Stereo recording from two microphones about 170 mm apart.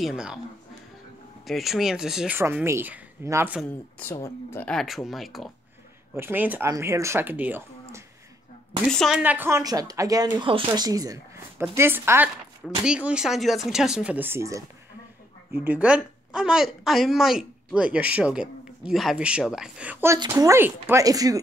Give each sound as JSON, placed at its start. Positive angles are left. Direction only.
{"t": 0.0, "sound": "speech", "side_deg": -5}
{"t": 1.4, "sound": "speech", "side_deg": 0}
{"t": 4.0, "sound": "speech", "side_deg": 15}
{"t": 6.1, "sound": "speech", "side_deg": -10}
{"t": 8.8, "sound": "speech", "side_deg": 0}
{"t": 9.2, "sound": "speech", "side_deg": -10}